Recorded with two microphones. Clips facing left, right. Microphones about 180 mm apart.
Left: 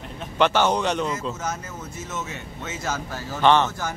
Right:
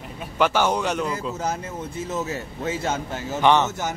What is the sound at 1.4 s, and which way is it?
Speech, 30° right (ahead or behind).